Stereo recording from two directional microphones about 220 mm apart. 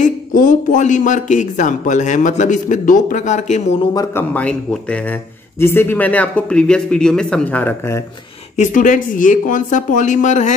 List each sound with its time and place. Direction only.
0.0 s speech: 35° left (ahead or behind)
3.9 s speech: 15° left (ahead or behind)
8.5 s speech: 35° left (ahead or behind)